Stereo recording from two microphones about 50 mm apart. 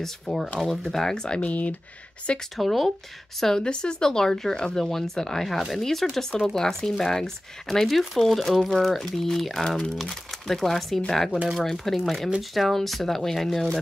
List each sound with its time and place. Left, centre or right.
0.0 s speech: centre
1.4 s speech: left
2.5 s speech: centre
3.6 s speech: centre